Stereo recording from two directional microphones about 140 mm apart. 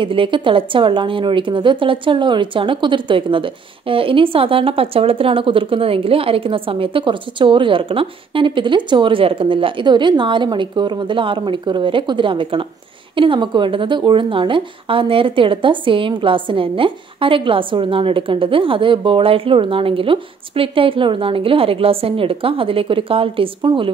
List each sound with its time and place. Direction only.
0.0 s a woman's voice: 35° right (ahead or behind)